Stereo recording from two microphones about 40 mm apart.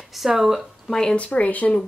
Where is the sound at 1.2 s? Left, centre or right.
Left.